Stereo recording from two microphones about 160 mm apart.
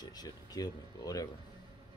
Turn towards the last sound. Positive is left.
turn(degrees=25)  # may be behind; listen again after turning